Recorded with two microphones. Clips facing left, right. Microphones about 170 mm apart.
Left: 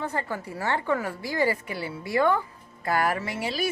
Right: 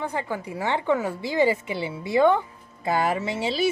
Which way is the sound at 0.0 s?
15° right (ahead or behind).